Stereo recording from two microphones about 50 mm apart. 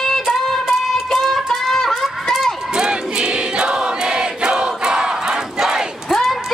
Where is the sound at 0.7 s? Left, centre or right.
Centre.